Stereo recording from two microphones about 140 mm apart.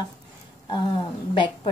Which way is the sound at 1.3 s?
35° left (ahead or behind).